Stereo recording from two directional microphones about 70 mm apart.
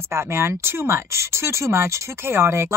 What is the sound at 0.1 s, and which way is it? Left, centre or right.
Speech, right.